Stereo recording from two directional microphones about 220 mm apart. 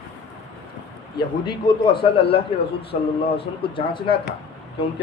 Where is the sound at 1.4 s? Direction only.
25° left (ahead or behind).